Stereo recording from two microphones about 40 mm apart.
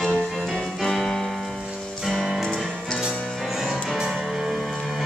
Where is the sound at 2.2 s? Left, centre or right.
Centre.